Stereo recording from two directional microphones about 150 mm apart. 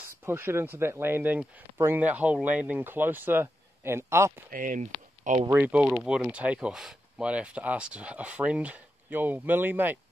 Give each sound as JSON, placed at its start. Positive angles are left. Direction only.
{"t": 0.0, "sound": "speech", "side_deg": -15}
{"t": 4.5, "sound": "speech", "side_deg": -65}
{"t": 5.5, "sound": "speech", "side_deg": -10}